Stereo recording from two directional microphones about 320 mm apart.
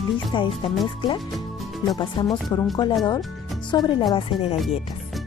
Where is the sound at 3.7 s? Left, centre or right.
Centre.